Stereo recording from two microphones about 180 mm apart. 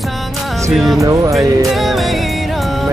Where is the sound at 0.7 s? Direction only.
Centre (ahead or behind).